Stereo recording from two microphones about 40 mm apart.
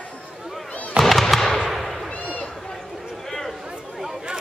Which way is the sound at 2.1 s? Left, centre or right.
Left.